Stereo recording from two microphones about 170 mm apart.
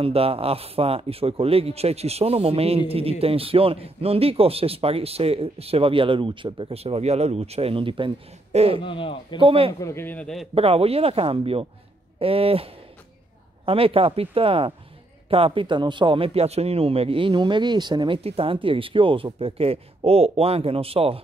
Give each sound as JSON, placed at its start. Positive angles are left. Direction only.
{"t": 0.0, "sound": "a man's voice", "side_deg": -35}
{"t": 8.8, "sound": "speech", "side_deg": 30}
{"t": 9.4, "sound": "a man's voice", "side_deg": -30}
{"t": 9.8, "sound": "speech", "side_deg": 15}
{"t": 10.5, "sound": "a man's voice", "side_deg": -35}
{"t": 13.7, "sound": "a man's voice", "side_deg": -35}